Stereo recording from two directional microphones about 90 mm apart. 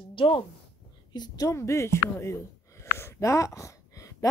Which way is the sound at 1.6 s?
30° left (ahead or behind).